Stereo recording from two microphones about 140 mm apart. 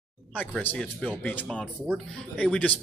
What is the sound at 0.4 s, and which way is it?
Speech, 10° left (ahead or behind).